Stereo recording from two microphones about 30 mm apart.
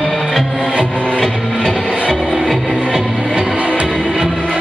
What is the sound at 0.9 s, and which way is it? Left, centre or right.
Music, left.